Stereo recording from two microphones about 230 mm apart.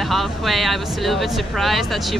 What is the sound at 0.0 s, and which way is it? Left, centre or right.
Speech, centre.